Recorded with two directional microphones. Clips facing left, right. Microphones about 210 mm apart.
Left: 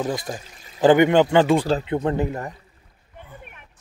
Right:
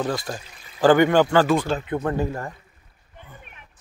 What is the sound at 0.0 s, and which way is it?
Speech, 20° left (ahead or behind).